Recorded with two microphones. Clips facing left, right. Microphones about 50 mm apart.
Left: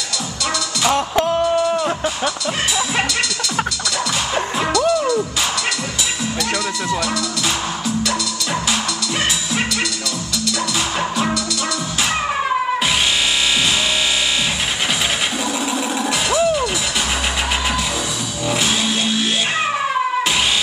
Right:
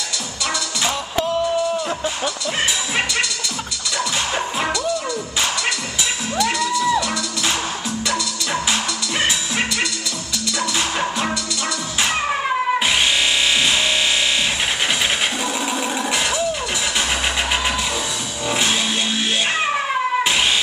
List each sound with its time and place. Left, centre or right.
0.8 s music: left
4.6 s music: centre
11.0 s music: centre
15.7 s a sound: centre